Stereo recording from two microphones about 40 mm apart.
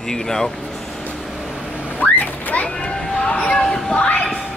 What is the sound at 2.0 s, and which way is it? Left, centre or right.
Speech, left.